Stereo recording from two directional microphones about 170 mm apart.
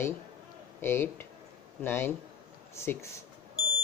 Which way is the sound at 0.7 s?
15° left (ahead or behind).